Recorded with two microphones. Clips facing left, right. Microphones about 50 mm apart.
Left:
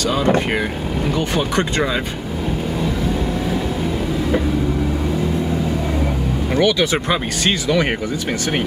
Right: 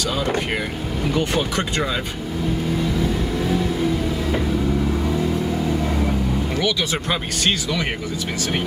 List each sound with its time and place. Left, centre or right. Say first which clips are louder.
6.5 s speech: left 10 dB; left